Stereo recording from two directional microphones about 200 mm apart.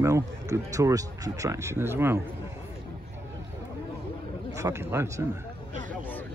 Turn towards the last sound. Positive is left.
turn(degrees=-15)  # may be behind; listen again after turning